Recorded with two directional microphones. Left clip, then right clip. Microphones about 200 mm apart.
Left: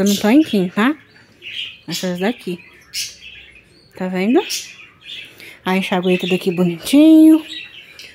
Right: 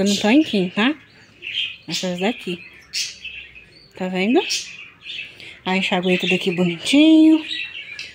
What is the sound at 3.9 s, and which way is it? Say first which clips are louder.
Speech: left 2 dB; 10° left (ahead or behind).